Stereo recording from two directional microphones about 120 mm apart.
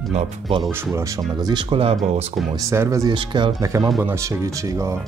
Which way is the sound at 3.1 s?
40° right (ahead or behind).